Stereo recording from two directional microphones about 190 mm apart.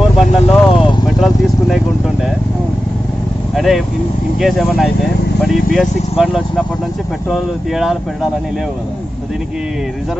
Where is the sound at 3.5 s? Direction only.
Centre (ahead or behind).